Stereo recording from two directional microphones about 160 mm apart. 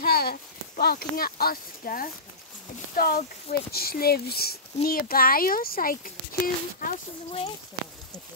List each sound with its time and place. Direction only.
0.0 s speech: 70° left (ahead or behind)
4.8 s speech: 65° left (ahead or behind)